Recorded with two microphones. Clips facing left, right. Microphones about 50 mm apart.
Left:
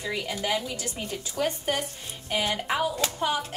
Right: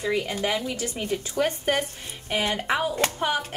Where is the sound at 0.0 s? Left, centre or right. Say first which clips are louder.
Right 4 dB; right.